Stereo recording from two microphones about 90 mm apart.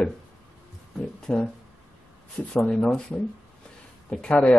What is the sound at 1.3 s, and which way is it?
Speech, 10° left (ahead or behind).